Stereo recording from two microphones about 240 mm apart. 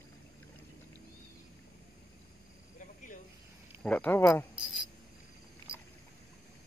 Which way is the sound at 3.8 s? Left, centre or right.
Centre.